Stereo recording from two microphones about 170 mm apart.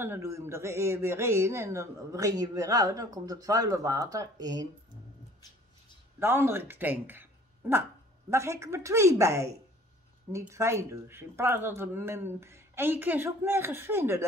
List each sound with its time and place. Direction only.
0.0 s speech: 15° right (ahead or behind)
6.1 s speech: 15° right (ahead or behind)